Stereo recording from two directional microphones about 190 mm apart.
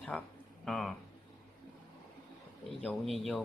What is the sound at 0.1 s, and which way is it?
Speech, 5° left (ahead or behind).